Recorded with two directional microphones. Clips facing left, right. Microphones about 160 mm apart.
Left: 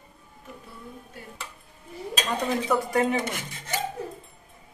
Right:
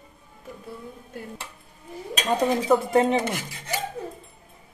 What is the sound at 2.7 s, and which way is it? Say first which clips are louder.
Speech: right 4 dB; 25° right (ahead or behind).